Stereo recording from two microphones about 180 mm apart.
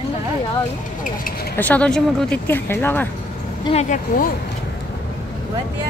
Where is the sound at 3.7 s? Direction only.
40° left (ahead or behind).